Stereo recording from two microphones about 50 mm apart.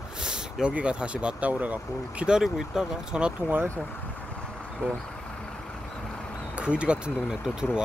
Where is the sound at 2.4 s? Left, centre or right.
Centre.